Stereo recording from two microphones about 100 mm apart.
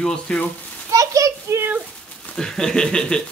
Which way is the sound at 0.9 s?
35° right (ahead or behind).